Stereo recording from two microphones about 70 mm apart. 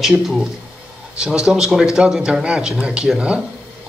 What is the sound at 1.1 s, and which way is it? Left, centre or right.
Speech, centre.